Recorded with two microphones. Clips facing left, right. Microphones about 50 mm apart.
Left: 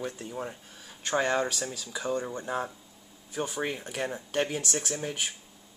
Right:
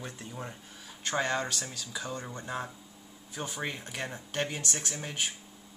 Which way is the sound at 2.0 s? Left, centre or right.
Left.